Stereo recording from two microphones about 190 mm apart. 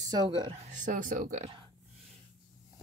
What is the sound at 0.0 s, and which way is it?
Speech, 20° right (ahead or behind).